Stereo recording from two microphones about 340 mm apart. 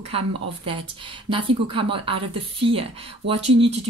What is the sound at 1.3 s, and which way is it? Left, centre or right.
Speech, centre.